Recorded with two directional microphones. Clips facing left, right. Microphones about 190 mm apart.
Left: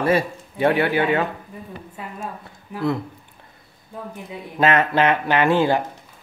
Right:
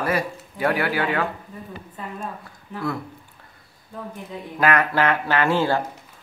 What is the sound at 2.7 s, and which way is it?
Speech, 10° left (ahead or behind).